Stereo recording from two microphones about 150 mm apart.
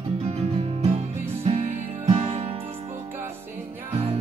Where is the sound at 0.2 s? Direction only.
45° right (ahead or behind).